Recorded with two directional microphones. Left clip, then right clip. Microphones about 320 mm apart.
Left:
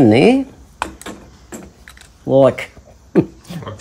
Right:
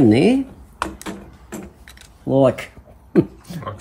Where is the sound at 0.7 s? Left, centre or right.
Centre.